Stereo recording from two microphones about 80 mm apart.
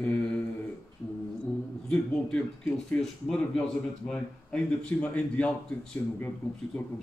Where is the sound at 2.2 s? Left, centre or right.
Centre.